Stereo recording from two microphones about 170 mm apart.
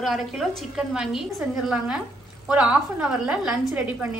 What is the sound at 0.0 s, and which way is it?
A woman's voice, centre (ahead or behind).